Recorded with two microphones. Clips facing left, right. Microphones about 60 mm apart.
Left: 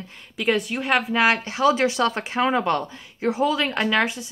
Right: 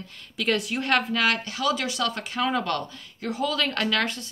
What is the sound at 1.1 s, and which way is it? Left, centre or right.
Speech, left.